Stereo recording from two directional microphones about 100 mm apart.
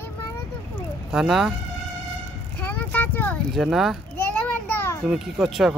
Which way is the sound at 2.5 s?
15° left (ahead or behind).